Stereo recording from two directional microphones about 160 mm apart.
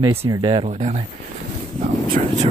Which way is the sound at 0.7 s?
45° right (ahead or behind).